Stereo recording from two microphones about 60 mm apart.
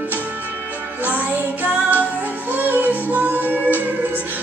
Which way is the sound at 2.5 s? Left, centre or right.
Right.